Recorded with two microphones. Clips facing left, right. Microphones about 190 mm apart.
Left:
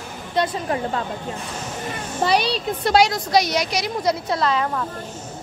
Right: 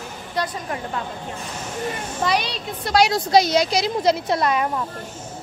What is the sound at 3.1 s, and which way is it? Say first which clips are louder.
Speech: right 3 dB; 30° right (ahead or behind).